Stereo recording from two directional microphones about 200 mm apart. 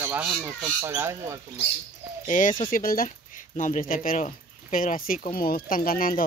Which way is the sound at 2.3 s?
40° left (ahead or behind).